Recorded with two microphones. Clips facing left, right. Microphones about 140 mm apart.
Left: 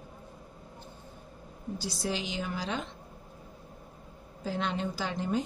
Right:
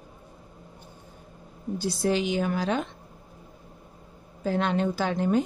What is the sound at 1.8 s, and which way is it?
A woman's voice, 55° right (ahead or behind).